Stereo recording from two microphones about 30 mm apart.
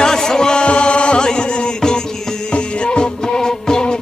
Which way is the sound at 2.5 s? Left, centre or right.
Left.